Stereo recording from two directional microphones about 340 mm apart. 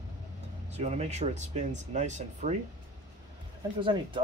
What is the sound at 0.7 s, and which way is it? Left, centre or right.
Speech, centre.